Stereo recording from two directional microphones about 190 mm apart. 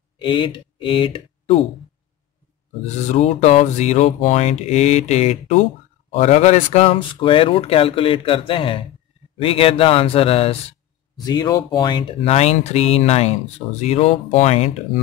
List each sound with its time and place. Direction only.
0.2 s speech: 25° left (ahead or behind)
3.1 s speech: 35° left (ahead or behind)